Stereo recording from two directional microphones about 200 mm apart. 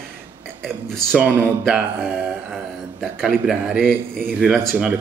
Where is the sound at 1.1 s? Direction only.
10° right (ahead or behind).